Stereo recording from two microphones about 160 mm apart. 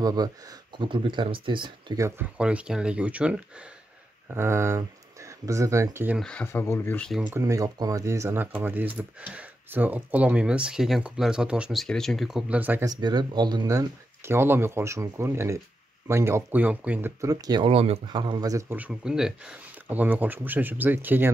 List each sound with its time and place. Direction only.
0.0 s speech: 25° right (ahead or behind)
2.0 s speech: 15° right (ahead or behind)
6.1 s speech: 5° left (ahead or behind)
6.4 s speech: 15° left (ahead or behind)
7.1 s speech: 5° right (ahead or behind)
7.3 s speech: 20° right (ahead or behind)
12.8 s speech: 25° right (ahead or behind)
17.6 s speech: 40° right (ahead or behind); by 21.3 s 10° right (ahead or behind)